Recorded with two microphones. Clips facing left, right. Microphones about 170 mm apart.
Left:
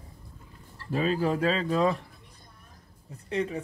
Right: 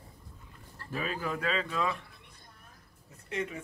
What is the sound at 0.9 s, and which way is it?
Speech, 35° left (ahead or behind).